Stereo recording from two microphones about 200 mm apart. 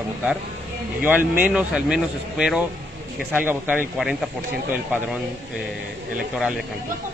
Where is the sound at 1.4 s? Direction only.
5° right (ahead or behind).